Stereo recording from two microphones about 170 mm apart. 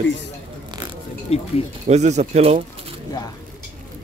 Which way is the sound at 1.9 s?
40° right (ahead or behind).